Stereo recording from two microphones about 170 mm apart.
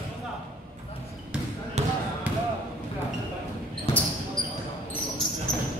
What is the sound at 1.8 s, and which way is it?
Basketball bounce, 40° right (ahead or behind).